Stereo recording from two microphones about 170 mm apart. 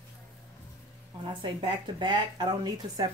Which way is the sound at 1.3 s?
30° right (ahead or behind).